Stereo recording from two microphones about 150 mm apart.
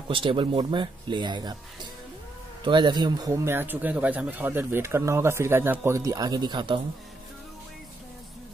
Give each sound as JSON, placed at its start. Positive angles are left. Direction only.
{"t": 0.1, "sound": "speech", "side_deg": -35}
{"t": 2.6, "sound": "speech", "side_deg": -30}